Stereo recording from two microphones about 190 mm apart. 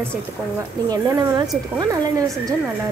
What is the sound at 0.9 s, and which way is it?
A woman's voice, 20° right (ahead or behind).